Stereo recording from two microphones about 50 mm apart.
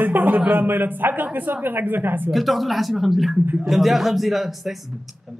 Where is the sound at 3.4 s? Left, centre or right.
Right.